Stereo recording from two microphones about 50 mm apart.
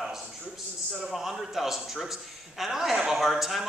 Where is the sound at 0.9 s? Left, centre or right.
Centre.